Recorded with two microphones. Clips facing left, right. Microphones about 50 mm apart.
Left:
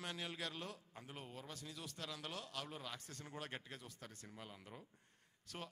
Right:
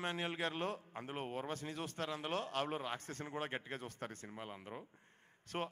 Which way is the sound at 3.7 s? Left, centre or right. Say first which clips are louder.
Right 9 dB; right.